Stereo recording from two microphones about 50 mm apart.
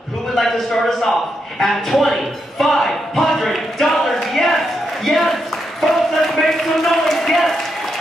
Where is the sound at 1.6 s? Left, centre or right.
Centre.